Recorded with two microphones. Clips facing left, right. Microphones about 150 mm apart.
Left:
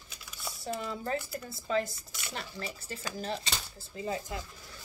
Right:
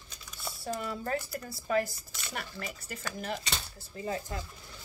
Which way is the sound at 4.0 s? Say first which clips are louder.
Even; 15° left (ahead or behind).